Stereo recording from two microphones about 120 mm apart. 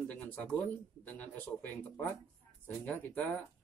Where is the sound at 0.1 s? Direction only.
15° left (ahead or behind).